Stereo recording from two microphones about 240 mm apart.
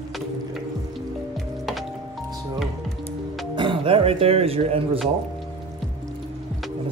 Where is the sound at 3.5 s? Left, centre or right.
Centre.